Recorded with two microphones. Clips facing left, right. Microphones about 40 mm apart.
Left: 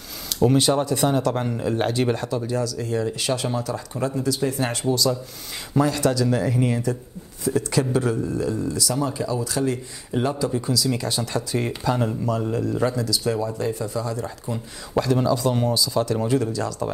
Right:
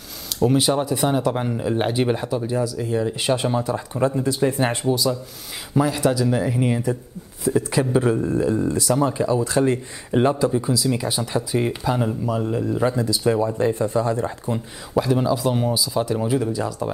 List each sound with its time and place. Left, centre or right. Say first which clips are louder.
0.4 s speech: even; centre; by 14.6 s right
15.0 s speech: right 1 dB; centre